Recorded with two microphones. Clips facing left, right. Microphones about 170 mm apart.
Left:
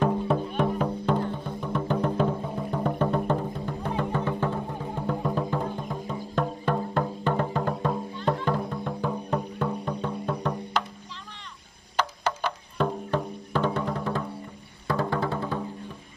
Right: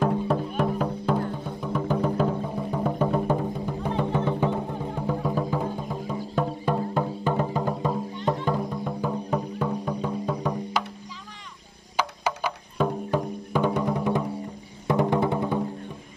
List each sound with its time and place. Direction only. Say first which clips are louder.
0.0 s music: even; centre (ahead or behind)
4.9 s music: right 1 dB; 5° right (ahead or behind)
12.0 s music: even; 10° right (ahead or behind)